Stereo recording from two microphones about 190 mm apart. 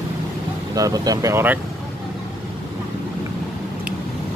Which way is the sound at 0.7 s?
20° right (ahead or behind).